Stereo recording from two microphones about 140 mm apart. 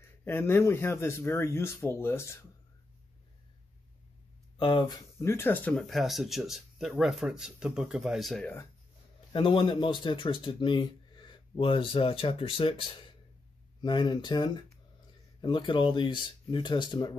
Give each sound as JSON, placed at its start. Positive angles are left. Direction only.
{"t": 0.0, "sound": "speech", "side_deg": 15}
{"t": 4.6, "sound": "speech", "side_deg": 35}
{"t": 5.2, "sound": "speech", "side_deg": 15}
{"t": 9.3, "sound": "speech", "side_deg": 40}